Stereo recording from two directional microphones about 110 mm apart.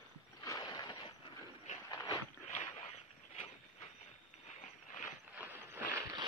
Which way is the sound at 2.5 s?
70° left (ahead or behind).